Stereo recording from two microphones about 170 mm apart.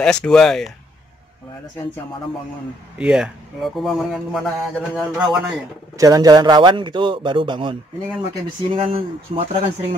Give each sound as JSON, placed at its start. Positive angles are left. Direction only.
{"t": 0.0, "sound": "a man's voice", "side_deg": 5}
{"t": 3.0, "sound": "a man's voice", "side_deg": -5}
{"t": 5.9, "sound": "speech", "side_deg": -20}
{"t": 8.7, "sound": "speech", "side_deg": -35}